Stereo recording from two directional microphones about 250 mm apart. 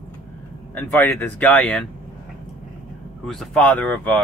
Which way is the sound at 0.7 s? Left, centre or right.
Centre.